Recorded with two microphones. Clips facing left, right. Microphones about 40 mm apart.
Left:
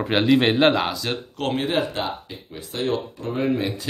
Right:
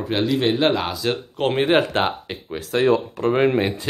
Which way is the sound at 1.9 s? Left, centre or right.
Right.